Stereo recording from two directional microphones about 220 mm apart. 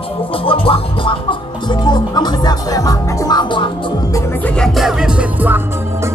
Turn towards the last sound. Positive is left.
turn(degrees=-5)  # may be behind; listen again after turning